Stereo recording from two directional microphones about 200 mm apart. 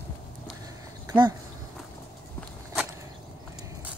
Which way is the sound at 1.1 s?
20° right (ahead or behind).